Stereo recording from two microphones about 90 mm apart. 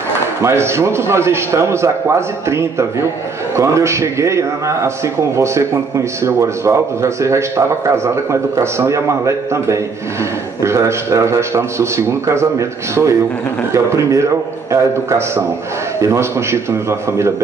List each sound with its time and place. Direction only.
0.4 s a man's voice: 30° right (ahead or behind)